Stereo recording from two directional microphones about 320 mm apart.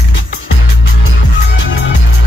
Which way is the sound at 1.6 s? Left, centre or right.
Left.